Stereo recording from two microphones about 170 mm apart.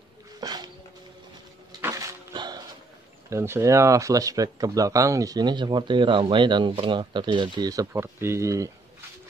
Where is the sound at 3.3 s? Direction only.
15° right (ahead or behind).